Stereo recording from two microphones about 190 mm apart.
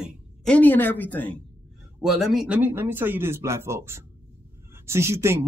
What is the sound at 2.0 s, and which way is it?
A woman's voice, centre (ahead or behind).